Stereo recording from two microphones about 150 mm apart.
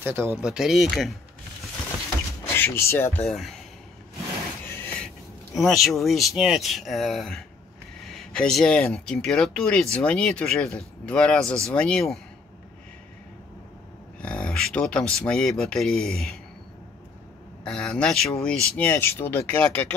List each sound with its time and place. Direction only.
0.0 s speech: 15° right (ahead or behind)
0.5 s speech: 5° right (ahead or behind)
2.5 s speech: 15° left (ahead or behind)
4.7 s speech: 5° left (ahead or behind)
14.2 s speech: 5° left (ahead or behind)
17.6 s speech: 5° left (ahead or behind)